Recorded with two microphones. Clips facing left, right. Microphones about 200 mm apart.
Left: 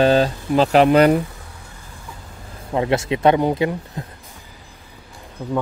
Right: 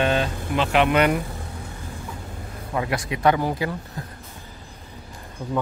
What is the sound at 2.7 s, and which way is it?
Speech, 25° left (ahead or behind).